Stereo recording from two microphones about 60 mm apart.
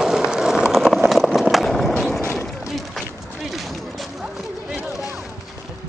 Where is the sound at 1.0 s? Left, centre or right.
Centre.